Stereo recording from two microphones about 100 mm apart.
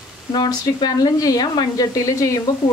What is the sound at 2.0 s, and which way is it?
Speech, 35° left (ahead or behind).